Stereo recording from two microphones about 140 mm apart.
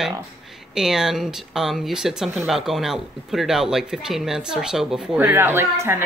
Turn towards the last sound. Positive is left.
turn(degrees=-20)  # may be behind; listen again after turning